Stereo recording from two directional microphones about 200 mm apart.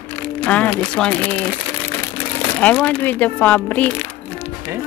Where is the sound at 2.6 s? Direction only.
5° left (ahead or behind).